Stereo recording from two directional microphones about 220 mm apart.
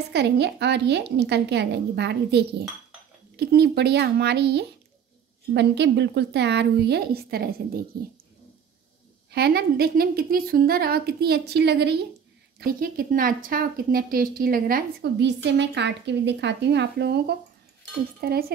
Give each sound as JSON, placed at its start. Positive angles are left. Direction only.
{"t": 0.1, "sound": "speech", "side_deg": -50}
{"t": 9.3, "sound": "speech", "side_deg": -45}